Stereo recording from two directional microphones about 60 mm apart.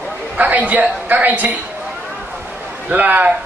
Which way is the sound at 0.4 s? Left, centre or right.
Right.